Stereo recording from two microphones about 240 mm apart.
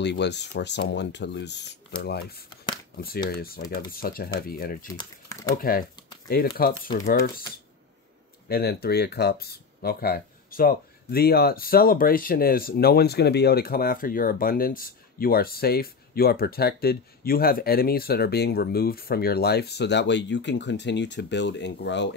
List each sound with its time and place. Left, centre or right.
0.0 s speech: left
8.5 s speech: left